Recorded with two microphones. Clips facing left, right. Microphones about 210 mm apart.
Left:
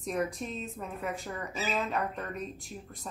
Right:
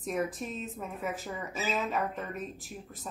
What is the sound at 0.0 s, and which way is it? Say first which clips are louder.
Speech: even; centre (ahead or behind).